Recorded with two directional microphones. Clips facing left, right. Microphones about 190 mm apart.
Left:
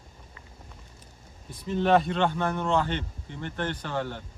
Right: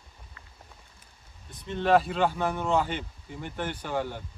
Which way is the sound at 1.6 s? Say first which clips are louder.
Left 1 dB; centre (ahead or behind).